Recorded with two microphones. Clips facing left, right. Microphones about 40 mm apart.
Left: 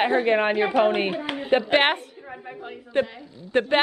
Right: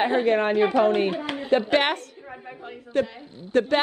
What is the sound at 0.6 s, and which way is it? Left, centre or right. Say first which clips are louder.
Speech: right 1 dB; centre.